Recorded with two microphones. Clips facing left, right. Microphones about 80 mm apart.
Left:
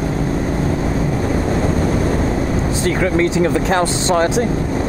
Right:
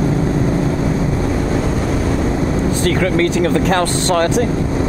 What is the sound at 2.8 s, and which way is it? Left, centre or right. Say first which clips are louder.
Speech: even; centre.